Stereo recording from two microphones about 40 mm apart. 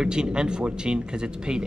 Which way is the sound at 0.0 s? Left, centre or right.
Right.